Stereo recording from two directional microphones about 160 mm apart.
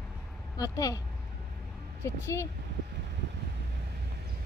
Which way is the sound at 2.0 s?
20° left (ahead or behind).